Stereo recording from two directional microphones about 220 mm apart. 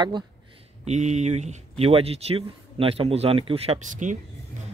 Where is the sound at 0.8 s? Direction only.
30° right (ahead or behind).